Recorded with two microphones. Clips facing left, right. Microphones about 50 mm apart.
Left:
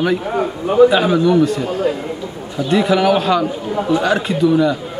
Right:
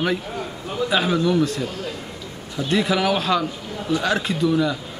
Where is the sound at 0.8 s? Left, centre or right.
Centre.